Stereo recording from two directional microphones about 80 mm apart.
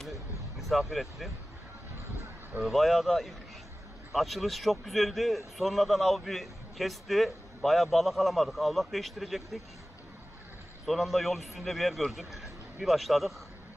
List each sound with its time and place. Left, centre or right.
0.6 s speech: centre
2.6 s a man's voice: centre
10.9 s a man's voice: centre